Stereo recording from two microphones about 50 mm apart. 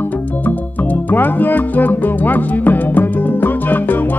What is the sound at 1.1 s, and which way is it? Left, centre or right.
Music, left.